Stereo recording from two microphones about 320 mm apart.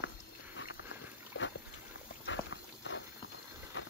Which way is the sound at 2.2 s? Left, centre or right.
Left.